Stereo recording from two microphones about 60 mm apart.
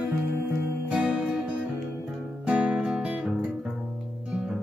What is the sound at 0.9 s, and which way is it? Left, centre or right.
Music, centre.